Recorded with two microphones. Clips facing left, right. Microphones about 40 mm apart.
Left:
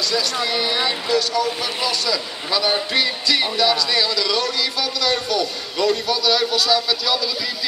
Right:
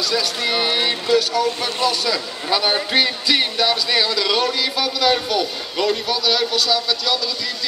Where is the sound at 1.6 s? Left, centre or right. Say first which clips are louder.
Right 3 dB; centre.